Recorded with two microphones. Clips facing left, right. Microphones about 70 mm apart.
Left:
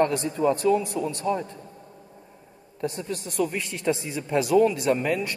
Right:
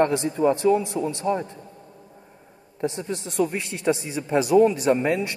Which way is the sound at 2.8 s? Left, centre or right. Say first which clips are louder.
Right 2 dB; right.